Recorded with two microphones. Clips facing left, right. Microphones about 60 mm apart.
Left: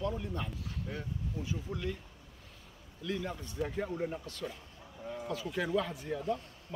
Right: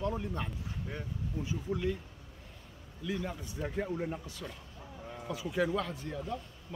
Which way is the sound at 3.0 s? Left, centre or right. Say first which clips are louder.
Even; centre.